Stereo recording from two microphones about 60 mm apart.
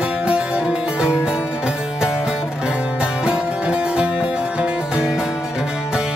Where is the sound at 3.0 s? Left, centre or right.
Centre.